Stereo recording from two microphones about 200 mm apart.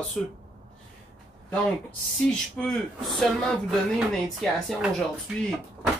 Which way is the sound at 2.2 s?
5° left (ahead or behind).